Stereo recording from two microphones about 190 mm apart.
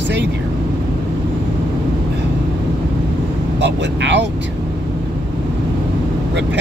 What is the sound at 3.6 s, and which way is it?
Speech, 65° right (ahead or behind).